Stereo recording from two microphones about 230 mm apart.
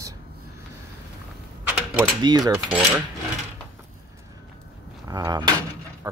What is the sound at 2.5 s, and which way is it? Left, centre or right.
Speech, centre.